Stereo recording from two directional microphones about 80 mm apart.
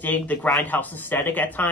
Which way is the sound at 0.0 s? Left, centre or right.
Centre.